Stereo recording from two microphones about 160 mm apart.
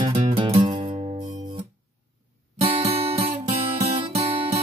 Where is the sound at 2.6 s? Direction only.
40° right (ahead or behind).